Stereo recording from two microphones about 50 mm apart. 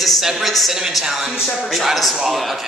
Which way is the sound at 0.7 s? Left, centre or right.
Centre.